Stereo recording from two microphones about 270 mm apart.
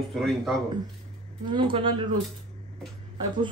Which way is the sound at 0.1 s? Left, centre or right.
Centre.